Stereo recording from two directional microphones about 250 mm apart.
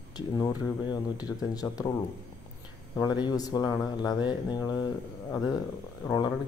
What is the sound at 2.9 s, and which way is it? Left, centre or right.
Speech, centre.